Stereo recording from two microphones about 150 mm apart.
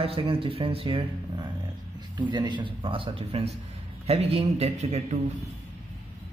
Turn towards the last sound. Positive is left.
turn(degrees=-45)  # may be behind; listen again after turning